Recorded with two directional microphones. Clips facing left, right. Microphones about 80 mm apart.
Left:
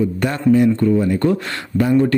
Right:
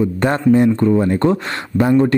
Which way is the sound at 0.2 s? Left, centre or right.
Right.